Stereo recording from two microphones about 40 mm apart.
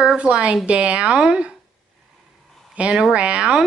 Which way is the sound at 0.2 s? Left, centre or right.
Right.